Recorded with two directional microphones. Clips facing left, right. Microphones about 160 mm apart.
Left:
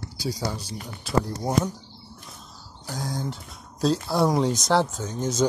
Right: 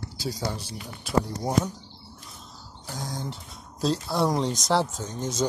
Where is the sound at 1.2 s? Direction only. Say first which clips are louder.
Left 1 dB; centre (ahead or behind).